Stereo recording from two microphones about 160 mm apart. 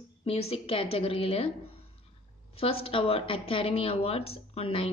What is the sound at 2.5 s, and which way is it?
A woman's voice, 35° left (ahead or behind).